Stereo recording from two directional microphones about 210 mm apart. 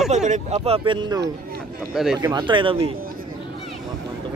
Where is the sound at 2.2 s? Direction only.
20° right (ahead or behind).